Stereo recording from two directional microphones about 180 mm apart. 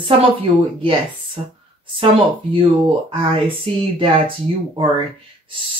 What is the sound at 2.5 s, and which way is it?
Speech, 30° right (ahead or behind).